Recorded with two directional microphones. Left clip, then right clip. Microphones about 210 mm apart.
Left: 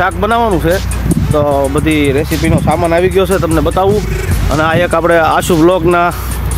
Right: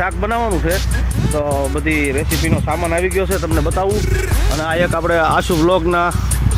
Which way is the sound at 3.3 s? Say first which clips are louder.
Left 7 dB; centre (ahead or behind).